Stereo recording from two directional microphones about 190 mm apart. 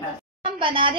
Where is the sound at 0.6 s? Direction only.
25° right (ahead or behind).